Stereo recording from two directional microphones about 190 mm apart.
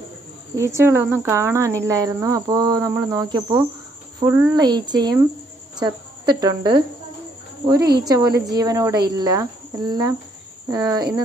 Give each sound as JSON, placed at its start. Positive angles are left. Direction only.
{"t": 0.6, "sound": "speech", "side_deg": -15}